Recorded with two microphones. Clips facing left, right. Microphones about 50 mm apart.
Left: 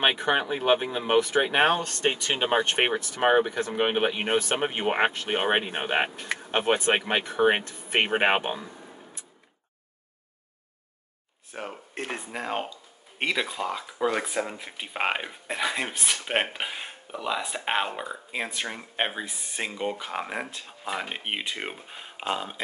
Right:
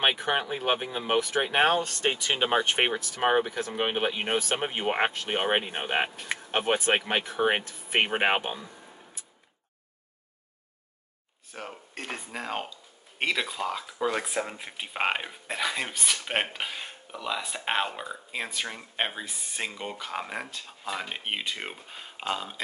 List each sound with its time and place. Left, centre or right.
0.3 s speech: centre
1.8 s speech: centre
2.3 s speech: centre
2.9 s speech: centre
11.5 s speech: centre